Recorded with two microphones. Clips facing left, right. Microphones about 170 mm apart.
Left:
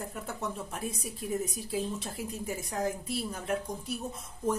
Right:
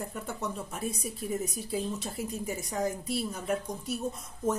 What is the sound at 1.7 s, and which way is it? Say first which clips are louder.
A woman's voice: right 1 dB; centre (ahead or behind).